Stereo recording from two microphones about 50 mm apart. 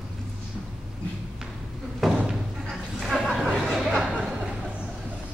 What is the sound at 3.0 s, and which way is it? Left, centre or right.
Chuckle, centre.